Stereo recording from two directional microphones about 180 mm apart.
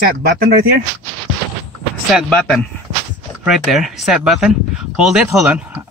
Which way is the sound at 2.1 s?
5° left (ahead or behind).